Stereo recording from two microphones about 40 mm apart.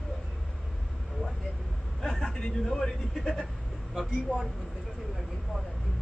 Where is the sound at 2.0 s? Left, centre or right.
Centre.